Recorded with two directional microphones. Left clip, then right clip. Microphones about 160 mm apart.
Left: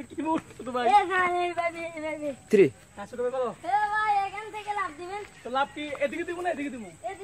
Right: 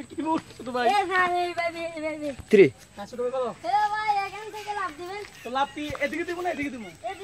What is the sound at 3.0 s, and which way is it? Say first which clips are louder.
A man's voice: even; 20° left (ahead or behind).